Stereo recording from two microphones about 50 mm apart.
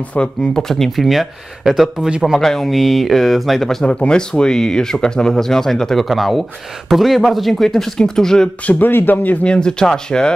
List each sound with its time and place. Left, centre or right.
0.4 s speech: centre
2.0 s speech: centre
2.4 s speech: centre
3.9 s speech: centre
8.6 s speech: left
9.4 s speech: centre